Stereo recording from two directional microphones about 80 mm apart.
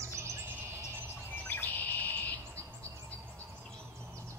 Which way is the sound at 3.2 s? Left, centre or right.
Right.